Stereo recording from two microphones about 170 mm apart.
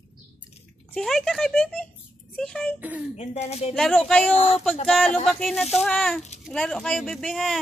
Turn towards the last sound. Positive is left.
turn(degrees=0)  # may be behind; listen again after turning